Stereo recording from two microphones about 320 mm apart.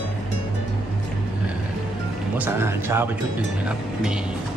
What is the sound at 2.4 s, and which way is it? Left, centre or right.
Speech, centre.